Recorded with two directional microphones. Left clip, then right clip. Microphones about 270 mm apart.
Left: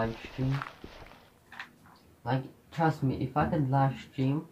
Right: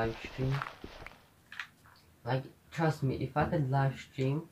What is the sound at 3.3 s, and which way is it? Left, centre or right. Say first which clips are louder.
Speech: left 3 dB; centre.